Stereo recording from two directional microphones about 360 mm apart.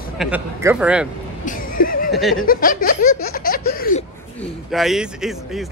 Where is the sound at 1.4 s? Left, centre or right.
Left.